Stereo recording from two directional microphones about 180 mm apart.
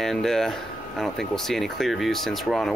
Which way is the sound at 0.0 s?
Centre (ahead or behind).